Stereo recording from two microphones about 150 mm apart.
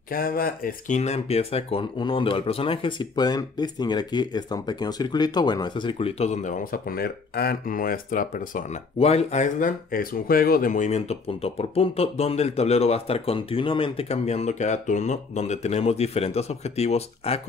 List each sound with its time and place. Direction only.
0.1 s speech: 75° left (ahead or behind); by 6.5 s 50° left (ahead or behind)
6.7 s speech: 80° left; by 8.6 s 65° left (ahead or behind)
9.0 s speech: 45° left (ahead or behind)